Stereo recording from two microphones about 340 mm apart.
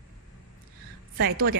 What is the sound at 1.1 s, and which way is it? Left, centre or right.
Speech, right.